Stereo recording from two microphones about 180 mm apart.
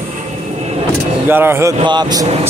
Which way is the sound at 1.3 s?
10° right (ahead or behind).